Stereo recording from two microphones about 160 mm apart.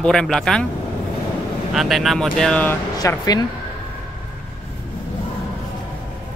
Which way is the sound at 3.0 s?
25° left (ahead or behind).